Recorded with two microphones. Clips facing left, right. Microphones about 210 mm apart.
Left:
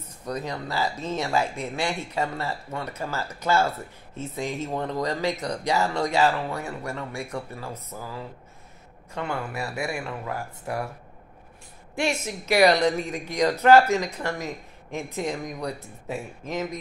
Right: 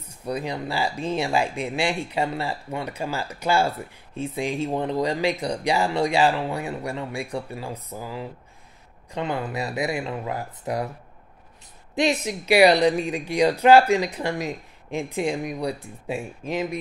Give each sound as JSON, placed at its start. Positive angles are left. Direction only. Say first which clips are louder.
{"t": 0.0, "sound": "speech", "louder": "right 3 dB", "side_deg": -10}
{"t": 11.9, "sound": "speech", "louder": "right 4 dB", "side_deg": -15}